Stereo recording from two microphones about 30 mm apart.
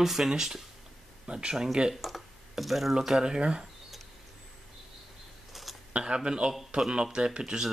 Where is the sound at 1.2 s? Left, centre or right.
Right.